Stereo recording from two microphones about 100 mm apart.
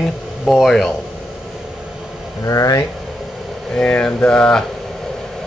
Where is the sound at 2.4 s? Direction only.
35° left (ahead or behind).